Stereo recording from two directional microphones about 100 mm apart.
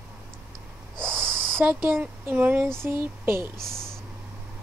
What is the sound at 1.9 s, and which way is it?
Speech, 20° right (ahead or behind).